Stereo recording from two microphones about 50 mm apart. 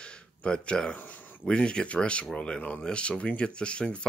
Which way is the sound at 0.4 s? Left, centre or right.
Centre.